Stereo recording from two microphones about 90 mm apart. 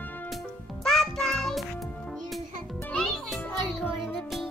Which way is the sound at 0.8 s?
5° left (ahead or behind).